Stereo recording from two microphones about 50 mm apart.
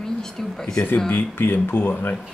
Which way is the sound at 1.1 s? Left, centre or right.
Left.